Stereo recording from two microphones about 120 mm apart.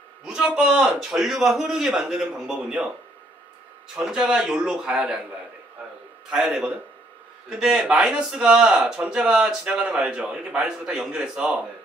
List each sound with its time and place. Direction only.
0.2 s a man's voice: 10° right (ahead or behind)
3.9 s a man's voice: 5° right (ahead or behind)
6.3 s a man's voice: 5° right (ahead or behind)